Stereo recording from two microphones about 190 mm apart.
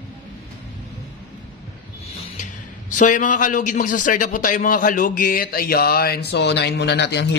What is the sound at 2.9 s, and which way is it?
A man's voice, 45° left (ahead or behind).